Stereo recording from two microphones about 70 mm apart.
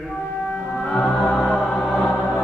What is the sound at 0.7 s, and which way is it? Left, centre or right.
Music, left.